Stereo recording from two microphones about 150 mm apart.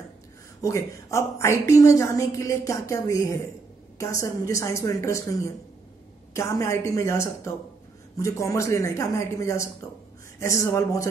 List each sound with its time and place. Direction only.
0.6 s a woman's voice: 20° left (ahead or behind)